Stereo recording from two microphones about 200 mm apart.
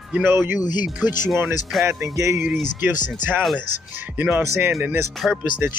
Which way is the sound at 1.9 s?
15° right (ahead or behind).